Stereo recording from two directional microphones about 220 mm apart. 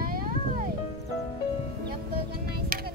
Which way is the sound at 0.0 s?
40° right (ahead or behind).